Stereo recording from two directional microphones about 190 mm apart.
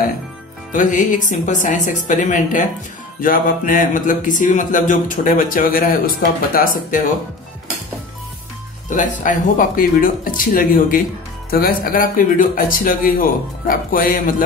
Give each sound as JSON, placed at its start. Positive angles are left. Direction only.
{"t": 0.7, "sound": "a woman's voice", "side_deg": 40}
{"t": 3.2, "sound": "music", "side_deg": 45}
{"t": 8.9, "sound": "music", "side_deg": 45}